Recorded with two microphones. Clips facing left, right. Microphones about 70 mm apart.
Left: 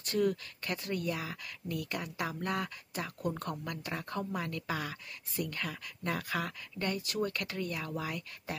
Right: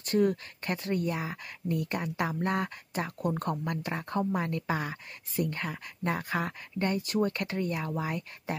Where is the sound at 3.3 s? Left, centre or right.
Right.